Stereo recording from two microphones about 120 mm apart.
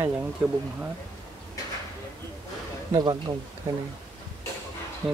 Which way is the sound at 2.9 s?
35° right (ahead or behind).